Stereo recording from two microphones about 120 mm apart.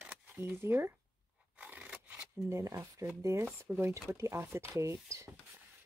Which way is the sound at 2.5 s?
25° right (ahead or behind).